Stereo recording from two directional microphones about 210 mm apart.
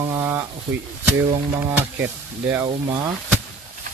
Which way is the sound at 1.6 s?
10° right (ahead or behind).